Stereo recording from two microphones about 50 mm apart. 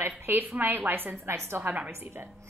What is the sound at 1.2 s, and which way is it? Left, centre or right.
Speech, right.